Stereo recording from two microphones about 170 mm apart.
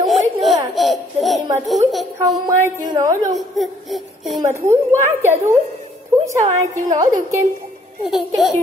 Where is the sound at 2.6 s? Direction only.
20° right (ahead or behind).